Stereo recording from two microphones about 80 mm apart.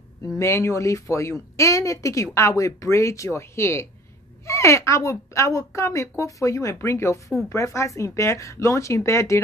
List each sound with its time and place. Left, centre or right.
0.2 s a woman's voice: left